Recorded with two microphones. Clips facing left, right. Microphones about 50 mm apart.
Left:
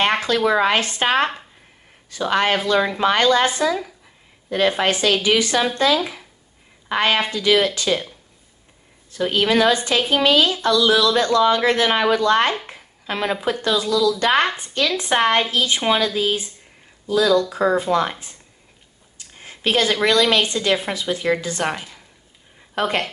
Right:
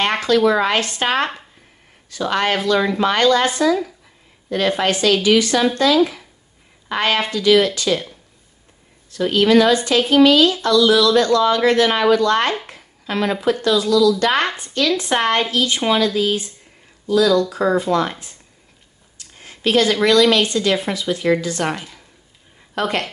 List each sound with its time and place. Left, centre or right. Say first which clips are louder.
0.0 s a woman's voice: right 3 dB; centre
6.9 s a woman's voice: even; centre
9.1 s a woman's voice: right 4 dB; left
19.1 s a woman's voice: left 1 dB; left
21.6 s speech: right 1 dB; centre